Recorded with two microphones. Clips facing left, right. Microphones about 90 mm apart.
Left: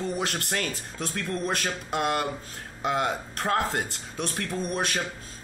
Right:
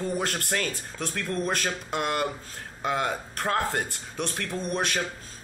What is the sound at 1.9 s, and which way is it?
Speech, 25° left (ahead or behind).